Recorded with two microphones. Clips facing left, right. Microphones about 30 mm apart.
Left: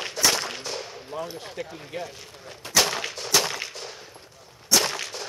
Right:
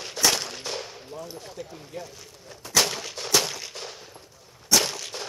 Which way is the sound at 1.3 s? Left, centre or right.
Left.